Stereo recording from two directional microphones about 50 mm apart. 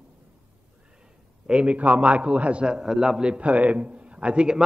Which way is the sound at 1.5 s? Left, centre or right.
Right.